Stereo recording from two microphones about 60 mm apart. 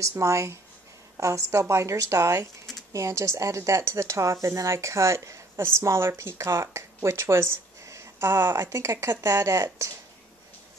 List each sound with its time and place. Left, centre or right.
0.2 s a woman's voice: right
9.1 s speech: right